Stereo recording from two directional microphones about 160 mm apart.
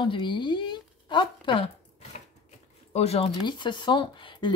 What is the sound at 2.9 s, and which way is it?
Speech, 40° left (ahead or behind).